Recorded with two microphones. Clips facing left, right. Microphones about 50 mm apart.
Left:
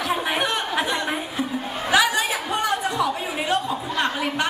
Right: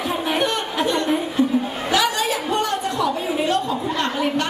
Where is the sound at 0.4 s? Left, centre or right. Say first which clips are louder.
Right 2 dB; centre.